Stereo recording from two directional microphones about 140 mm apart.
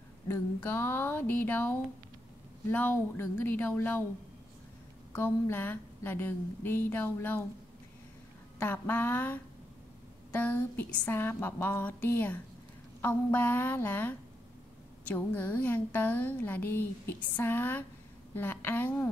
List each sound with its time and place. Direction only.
0.3 s a woman's voice: 15° left (ahead or behind)
5.1 s a woman's voice: 15° left (ahead or behind)
8.5 s a woman's voice: 15° left (ahead or behind)